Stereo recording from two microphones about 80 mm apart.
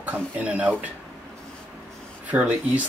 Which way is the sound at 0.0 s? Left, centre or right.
Centre.